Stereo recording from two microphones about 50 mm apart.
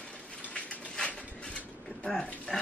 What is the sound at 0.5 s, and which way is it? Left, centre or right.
Mechanisms, left.